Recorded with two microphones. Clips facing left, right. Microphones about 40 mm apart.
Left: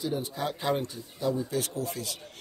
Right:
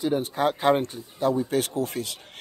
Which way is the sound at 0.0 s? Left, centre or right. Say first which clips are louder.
Right 7 dB; right.